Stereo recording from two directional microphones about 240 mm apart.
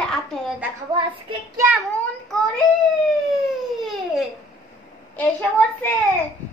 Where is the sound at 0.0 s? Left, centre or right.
Centre.